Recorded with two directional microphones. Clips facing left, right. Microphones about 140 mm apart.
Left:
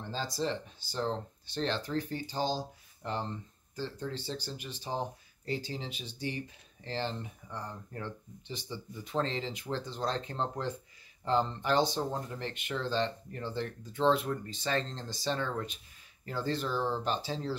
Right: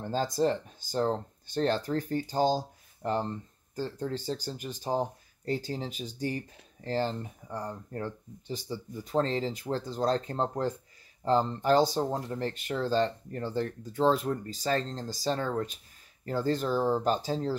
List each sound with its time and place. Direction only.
0.1 s speech: 45° right (ahead or behind)